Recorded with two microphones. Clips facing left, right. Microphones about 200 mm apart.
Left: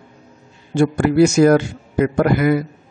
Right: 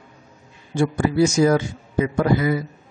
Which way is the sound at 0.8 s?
70° left (ahead or behind).